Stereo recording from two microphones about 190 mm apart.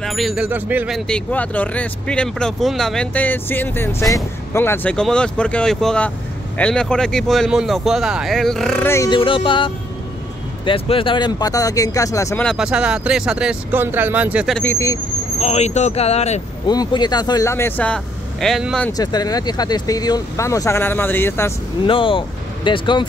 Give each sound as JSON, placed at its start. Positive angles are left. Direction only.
{"t": 0.0, "sound": "speech", "side_deg": 0}
{"t": 12.4, "sound": "speech", "side_deg": -5}
{"t": 14.6, "sound": "speech", "side_deg": 15}
{"t": 15.3, "sound": "speech", "side_deg": 35}
{"t": 16.6, "sound": "speech", "side_deg": 20}
{"t": 18.9, "sound": "speech", "side_deg": 20}
{"t": 21.8, "sound": "speech", "side_deg": 30}